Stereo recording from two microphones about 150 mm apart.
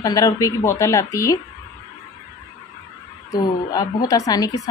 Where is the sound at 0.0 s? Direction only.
25° left (ahead or behind).